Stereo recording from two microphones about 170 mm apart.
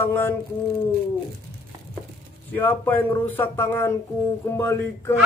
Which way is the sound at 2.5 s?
10° left (ahead or behind).